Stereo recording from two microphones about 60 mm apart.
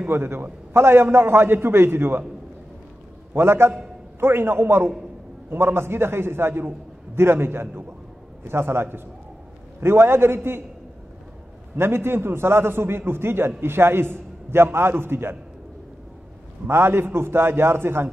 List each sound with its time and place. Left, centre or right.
0.1 s a man's voice: right
3.3 s a man's voice: right
11.7 s a man's voice: right
16.6 s a man's voice: right